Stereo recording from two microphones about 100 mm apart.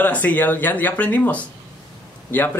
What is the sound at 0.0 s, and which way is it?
Speech, 15° left (ahead or behind).